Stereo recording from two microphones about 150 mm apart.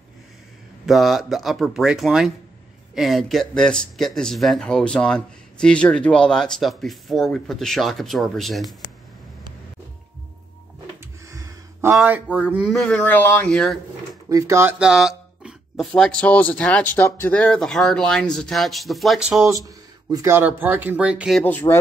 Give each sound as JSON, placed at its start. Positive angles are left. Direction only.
{"t": 0.8, "sound": "speech", "side_deg": 0}
{"t": 11.2, "sound": "a sound", "side_deg": -20}
{"t": 12.6, "sound": "speech", "side_deg": 5}
{"t": 14.3, "sound": "speech", "side_deg": -15}
{"t": 14.8, "sound": "speech", "side_deg": -5}
{"t": 19.4, "sound": "speech", "side_deg": -20}
{"t": 21.4, "sound": "speech", "side_deg": 10}